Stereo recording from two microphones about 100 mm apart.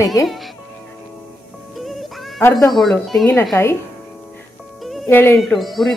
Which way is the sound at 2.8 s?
Centre (ahead or behind).